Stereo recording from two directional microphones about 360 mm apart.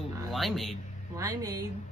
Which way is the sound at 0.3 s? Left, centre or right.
Centre.